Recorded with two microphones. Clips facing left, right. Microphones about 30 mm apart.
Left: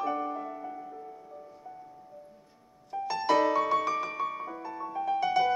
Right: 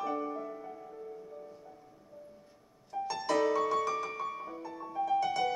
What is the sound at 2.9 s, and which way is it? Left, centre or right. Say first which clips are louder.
Music: left 5 dB; centre.